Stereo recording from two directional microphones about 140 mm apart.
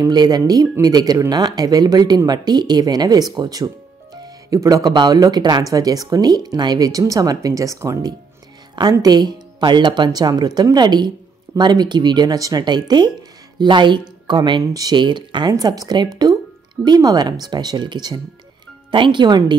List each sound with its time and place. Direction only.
0.0 s a woman's voice: 30° right (ahead or behind)